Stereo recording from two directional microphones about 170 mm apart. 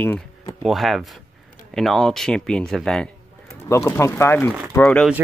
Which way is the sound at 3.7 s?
15° left (ahead or behind).